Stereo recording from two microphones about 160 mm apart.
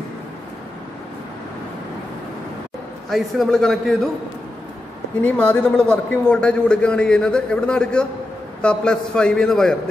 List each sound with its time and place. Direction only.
3.1 s a man's voice: centre (ahead or behind)
5.2 s a man's voice: 10° left (ahead or behind)